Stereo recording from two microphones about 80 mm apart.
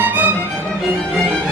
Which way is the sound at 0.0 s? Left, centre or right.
Right.